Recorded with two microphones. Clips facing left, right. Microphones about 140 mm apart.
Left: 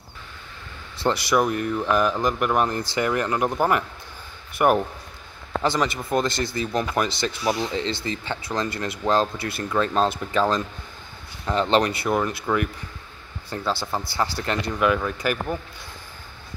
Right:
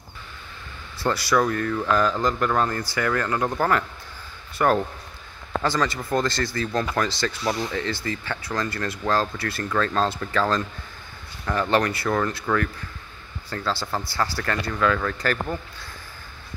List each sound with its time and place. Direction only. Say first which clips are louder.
0.9 s speech: left 1 dB; 20° left (ahead or behind)